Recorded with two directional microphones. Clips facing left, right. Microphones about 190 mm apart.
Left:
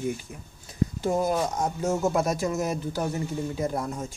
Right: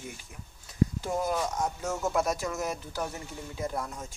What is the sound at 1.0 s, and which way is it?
Speech, 30° left (ahead or behind).